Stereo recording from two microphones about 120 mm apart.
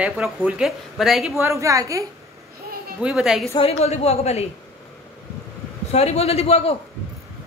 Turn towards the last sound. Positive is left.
turn(degrees=55)  # may be behind; listen again after turning